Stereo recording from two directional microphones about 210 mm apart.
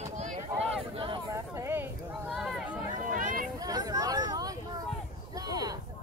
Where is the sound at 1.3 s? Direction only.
15° right (ahead or behind).